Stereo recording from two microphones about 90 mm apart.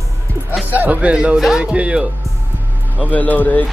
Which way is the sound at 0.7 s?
20° right (ahead or behind).